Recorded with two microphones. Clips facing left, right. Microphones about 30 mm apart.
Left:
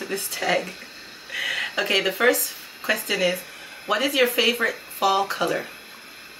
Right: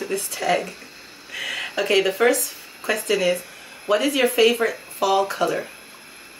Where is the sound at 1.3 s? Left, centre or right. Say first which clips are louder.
Left 1 dB; centre.